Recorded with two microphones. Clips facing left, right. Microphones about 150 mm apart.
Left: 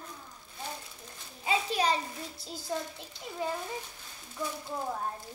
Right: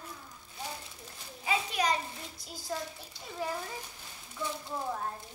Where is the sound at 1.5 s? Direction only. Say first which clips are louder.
Left 2 dB; 30° left (ahead or behind).